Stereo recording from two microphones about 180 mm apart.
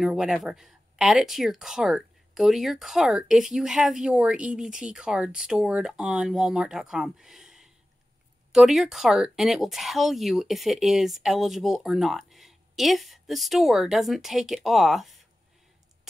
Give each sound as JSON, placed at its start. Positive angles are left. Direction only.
{"t": 0.0, "sound": "speech", "side_deg": -5}